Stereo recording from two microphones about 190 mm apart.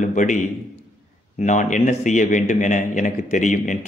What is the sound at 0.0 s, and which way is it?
A man's voice, 40° left (ahead or behind).